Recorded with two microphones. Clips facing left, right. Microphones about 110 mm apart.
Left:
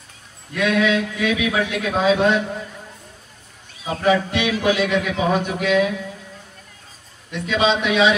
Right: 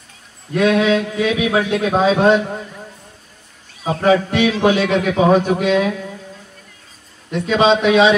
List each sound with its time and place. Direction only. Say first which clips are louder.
0.5 s a man's voice: right 4 dB; 35° right (ahead or behind)
3.8 s a man's voice: right 4 dB; 40° right (ahead or behind)
7.2 s a man's voice: right 5 dB; 40° right (ahead or behind)